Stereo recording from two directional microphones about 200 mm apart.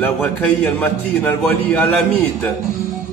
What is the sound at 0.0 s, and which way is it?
A man's voice, 10° left (ahead or behind).